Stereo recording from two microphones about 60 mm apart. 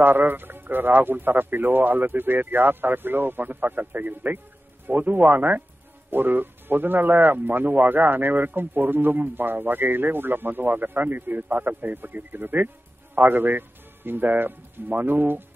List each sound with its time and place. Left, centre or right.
0.0 s speech: right